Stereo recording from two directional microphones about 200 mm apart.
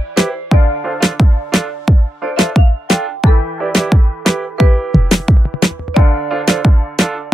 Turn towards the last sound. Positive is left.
turn(degrees=0)  # may be behind; listen again after turning